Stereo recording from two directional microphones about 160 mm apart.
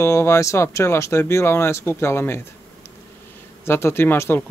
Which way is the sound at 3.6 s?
15° left (ahead or behind).